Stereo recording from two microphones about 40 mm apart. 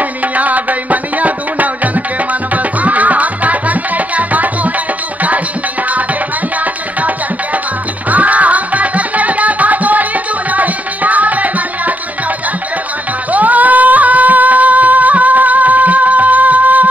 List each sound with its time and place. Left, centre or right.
0.4 s music: right
8.1 s music: right
13.3 s music: right